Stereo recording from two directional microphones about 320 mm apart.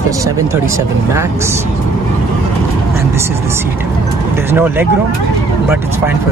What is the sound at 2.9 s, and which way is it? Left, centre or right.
Speech, centre.